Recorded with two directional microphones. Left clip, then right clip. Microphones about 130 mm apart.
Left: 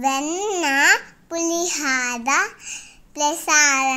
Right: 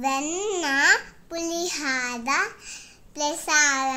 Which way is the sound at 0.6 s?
35° left (ahead or behind).